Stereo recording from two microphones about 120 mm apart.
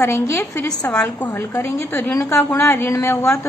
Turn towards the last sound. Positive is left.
turn(degrees=20)  # may be behind; listen again after turning